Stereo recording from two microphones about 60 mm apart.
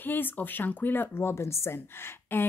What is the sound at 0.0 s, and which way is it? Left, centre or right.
A woman's voice, left.